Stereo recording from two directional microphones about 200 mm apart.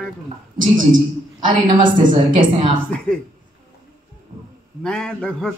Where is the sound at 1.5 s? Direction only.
25° right (ahead or behind).